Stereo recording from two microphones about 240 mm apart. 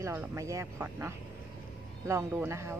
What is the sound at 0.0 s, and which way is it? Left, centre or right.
A woman's voice, centre.